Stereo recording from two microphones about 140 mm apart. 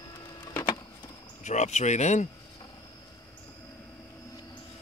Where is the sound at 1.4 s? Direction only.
55° left (ahead or behind).